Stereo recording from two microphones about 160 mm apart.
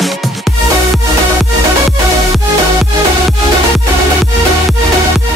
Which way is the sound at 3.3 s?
Centre (ahead or behind).